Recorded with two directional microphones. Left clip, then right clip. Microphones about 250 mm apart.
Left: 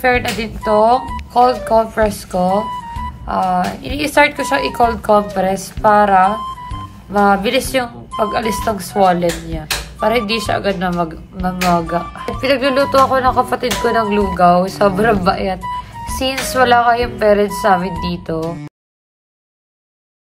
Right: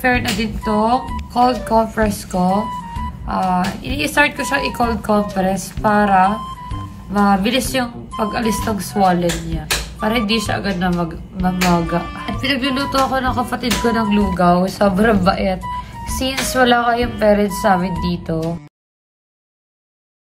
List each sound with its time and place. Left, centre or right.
0.0 s speech: centre
2.6 s music: centre
3.3 s speech: centre
6.3 s music: centre
7.1 s speech: centre
12.4 s speech: left
14.3 s speech: centre
18.4 s speech: centre